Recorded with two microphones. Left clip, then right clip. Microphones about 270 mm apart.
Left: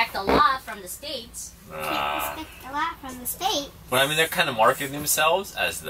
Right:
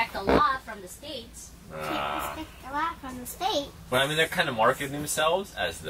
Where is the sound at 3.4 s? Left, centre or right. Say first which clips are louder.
Left 2 dB; centre.